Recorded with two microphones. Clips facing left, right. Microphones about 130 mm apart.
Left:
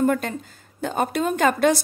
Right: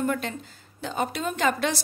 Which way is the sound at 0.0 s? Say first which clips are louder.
Left 6 dB; 45° left (ahead or behind).